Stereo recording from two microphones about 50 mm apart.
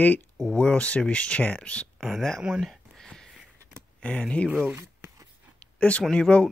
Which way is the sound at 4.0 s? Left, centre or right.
Left.